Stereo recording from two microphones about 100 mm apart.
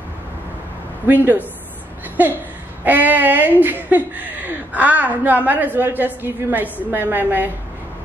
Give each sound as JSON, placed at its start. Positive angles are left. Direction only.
{"t": 1.0, "sound": "speech", "side_deg": -20}